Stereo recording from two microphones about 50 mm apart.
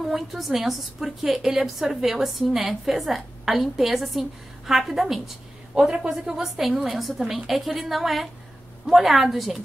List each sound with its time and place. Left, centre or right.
0.0 s a woman's voice: centre